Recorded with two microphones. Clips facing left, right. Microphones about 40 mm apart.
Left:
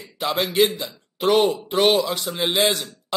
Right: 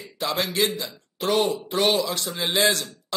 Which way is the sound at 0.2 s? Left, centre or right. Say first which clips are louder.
Left 4 dB; centre.